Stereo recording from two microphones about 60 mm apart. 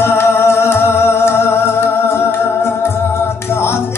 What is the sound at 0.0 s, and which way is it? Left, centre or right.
Music, left.